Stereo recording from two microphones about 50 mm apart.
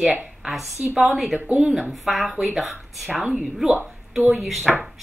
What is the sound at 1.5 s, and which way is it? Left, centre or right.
Speech, centre.